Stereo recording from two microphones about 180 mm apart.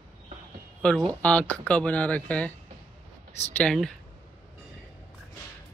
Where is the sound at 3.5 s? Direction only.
5° left (ahead or behind).